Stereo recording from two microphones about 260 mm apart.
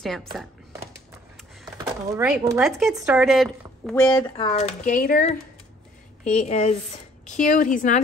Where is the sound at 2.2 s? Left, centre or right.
Centre.